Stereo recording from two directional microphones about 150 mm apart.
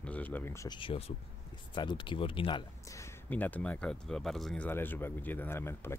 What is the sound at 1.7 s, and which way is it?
Speech, 30° left (ahead or behind).